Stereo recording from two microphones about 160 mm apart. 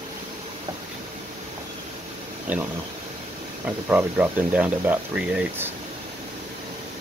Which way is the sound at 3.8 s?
10° right (ahead or behind).